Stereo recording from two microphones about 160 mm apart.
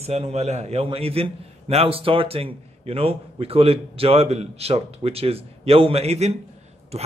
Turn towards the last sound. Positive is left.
turn(degrees=-40)  # may be behind; listen again after turning